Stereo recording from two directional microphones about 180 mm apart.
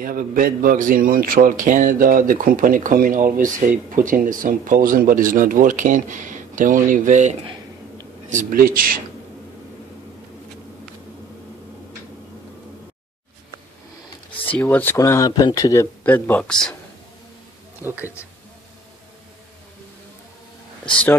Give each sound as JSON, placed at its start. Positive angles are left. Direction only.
{"t": 0.0, "sound": "a man's voice", "side_deg": -50}
{"t": 14.6, "sound": "speech", "side_deg": 10}